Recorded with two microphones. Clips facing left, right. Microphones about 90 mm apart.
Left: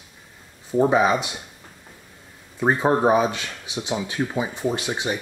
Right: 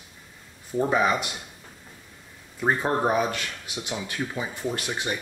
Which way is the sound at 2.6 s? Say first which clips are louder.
Left 5 dB; 20° left (ahead or behind).